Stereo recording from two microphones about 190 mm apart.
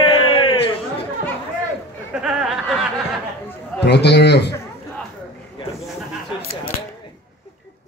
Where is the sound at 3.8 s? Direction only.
60° left (ahead or behind).